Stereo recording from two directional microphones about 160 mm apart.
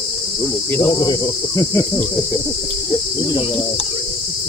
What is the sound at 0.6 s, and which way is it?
Cricket, 20° left (ahead or behind).